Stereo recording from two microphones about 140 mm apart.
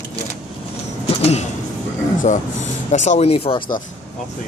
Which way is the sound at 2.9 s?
55° left (ahead or behind).